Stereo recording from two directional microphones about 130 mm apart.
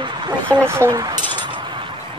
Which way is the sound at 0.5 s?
20° right (ahead or behind).